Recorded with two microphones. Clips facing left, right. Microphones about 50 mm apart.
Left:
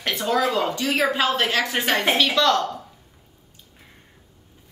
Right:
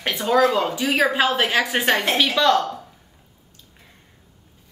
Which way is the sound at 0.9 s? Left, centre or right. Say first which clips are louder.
Right 3 dB; centre.